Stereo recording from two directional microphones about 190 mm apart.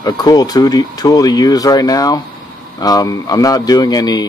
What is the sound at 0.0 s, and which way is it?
Speech, 20° left (ahead or behind).